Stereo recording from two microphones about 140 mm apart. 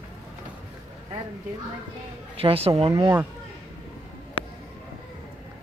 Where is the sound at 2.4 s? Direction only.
40° right (ahead or behind).